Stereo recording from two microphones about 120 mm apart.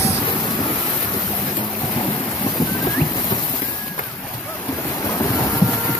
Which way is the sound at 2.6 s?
35° left (ahead or behind).